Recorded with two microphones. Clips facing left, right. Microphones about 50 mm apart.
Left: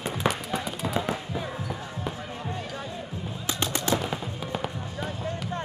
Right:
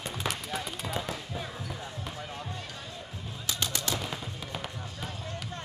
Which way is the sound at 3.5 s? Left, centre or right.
Left.